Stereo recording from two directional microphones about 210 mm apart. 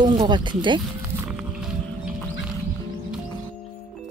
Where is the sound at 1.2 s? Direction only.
Centre (ahead or behind).